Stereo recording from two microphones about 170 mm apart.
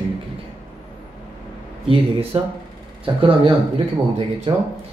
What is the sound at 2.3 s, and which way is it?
Speech, 35° right (ahead or behind).